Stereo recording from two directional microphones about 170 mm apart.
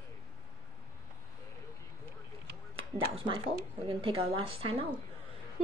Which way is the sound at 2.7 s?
30° right (ahead or behind).